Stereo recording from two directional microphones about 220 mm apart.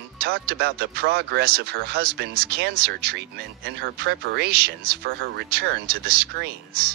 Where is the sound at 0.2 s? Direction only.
45° right (ahead or behind).